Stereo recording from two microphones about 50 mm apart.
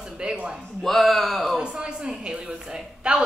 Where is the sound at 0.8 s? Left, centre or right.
Centre.